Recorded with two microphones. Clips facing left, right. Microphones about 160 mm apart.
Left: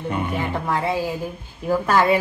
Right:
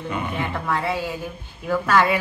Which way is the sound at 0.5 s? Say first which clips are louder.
Left 2 dB; 30° left (ahead or behind).